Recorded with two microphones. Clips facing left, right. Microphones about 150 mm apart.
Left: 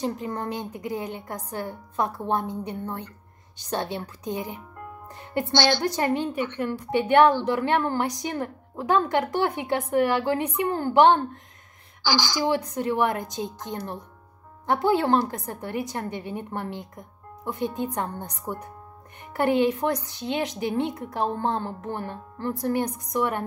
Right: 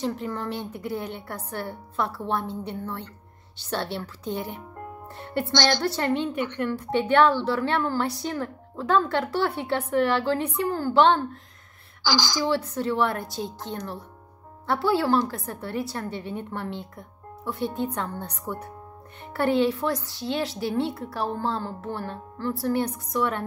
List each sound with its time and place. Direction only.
0.3 s a woman's voice: 15° left (ahead or behind)
12.4 s a woman's voice: 15° left (ahead or behind)